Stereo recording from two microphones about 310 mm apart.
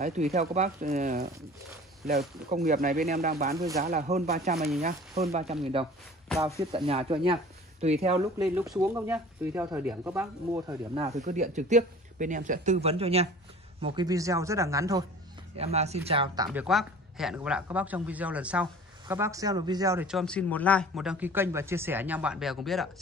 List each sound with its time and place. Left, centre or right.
0.0 s speech: right
3.5 s speech: centre
3.8 s speech: right
6.9 s speech: centre
8.4 s speech: centre
16.5 s speech: centre